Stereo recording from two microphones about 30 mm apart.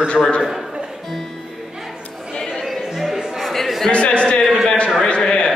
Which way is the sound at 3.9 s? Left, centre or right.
Left.